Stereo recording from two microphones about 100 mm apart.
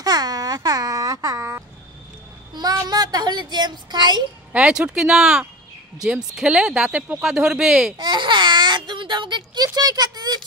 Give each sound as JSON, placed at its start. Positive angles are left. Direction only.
{"t": 0.0, "sound": "babbling", "side_deg": -40}
{"t": 2.5, "sound": "speech", "side_deg": -40}
{"t": 4.5, "sound": "speech", "side_deg": -10}
{"t": 8.0, "sound": "a sound", "side_deg": -55}